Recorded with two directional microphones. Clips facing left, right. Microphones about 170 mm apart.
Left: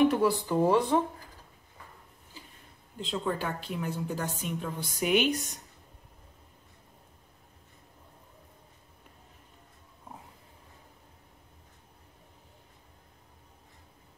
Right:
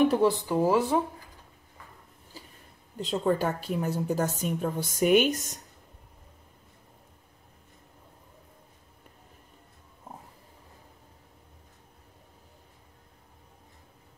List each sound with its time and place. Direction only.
0.1 s speech: 25° right (ahead or behind)
0.5 s speech: 5° right (ahead or behind)
3.0 s a woman's voice: 40° right (ahead or behind)